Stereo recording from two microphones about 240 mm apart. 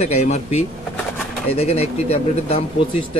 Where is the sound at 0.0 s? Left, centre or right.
Left.